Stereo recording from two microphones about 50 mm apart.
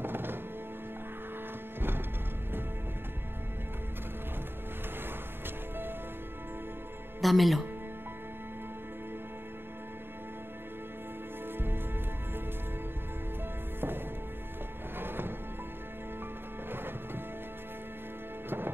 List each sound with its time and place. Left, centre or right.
0.0 s music: right
1.8 s music: right
7.2 s speech: centre
11.5 s music: right
13.7 s music: right
16.7 s music: right